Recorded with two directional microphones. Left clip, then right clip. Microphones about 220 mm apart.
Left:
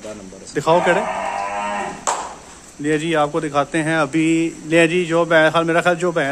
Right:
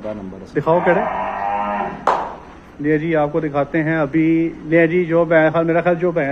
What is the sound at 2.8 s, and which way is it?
Speech, 25° left (ahead or behind).